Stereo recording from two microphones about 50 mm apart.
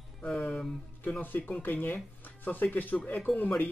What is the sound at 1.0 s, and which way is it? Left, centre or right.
Speech, left.